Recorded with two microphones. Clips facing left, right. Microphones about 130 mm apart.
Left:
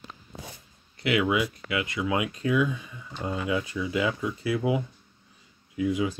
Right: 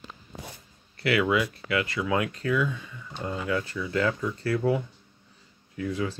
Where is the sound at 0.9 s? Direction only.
20° left (ahead or behind).